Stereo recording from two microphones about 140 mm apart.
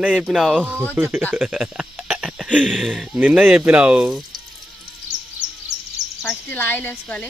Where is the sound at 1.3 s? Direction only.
10° right (ahead or behind).